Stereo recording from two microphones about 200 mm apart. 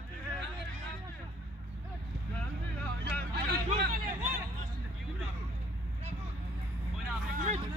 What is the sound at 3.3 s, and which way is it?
Vehicle, 55° right (ahead or behind).